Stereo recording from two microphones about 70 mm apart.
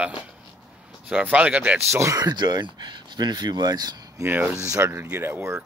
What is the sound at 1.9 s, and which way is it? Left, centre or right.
Speech, right.